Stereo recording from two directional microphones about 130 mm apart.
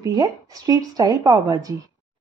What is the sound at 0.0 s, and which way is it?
Speech, 30° right (ahead or behind).